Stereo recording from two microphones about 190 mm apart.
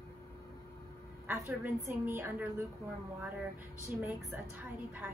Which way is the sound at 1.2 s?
10° right (ahead or behind).